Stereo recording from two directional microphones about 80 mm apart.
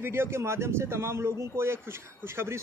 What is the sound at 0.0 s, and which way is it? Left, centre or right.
A man's voice, right.